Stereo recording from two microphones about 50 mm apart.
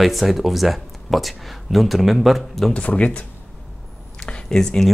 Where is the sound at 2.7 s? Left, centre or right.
Left.